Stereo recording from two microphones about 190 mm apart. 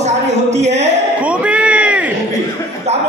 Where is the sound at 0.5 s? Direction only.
35° right (ahead or behind).